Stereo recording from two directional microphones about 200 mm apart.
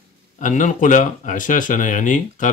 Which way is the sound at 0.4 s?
40° left (ahead or behind).